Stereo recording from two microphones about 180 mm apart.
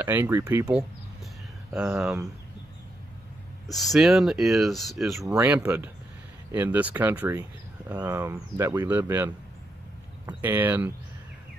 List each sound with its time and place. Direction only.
0.0 s speech: 15° right (ahead or behind)
1.9 s speech: 10° right (ahead or behind)
3.7 s speech: centre (ahead or behind)
5.2 s speech: 15° right (ahead or behind)